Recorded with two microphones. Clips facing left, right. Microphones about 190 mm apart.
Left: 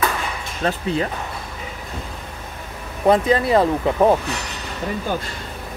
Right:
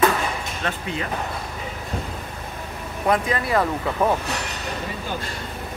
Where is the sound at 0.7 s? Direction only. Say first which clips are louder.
Left 7 dB; 35° left (ahead or behind).